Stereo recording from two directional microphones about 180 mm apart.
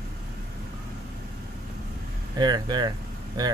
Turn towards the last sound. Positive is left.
turn(degrees=-25)  # may be behind; listen again after turning